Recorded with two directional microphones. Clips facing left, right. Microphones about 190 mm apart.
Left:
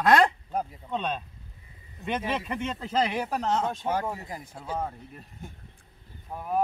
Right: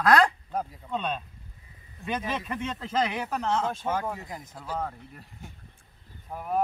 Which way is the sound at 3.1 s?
30° left (ahead or behind).